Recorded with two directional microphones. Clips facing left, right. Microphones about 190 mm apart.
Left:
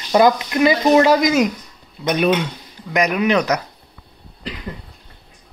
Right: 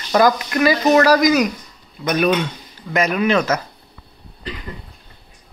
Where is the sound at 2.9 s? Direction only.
15° left (ahead or behind).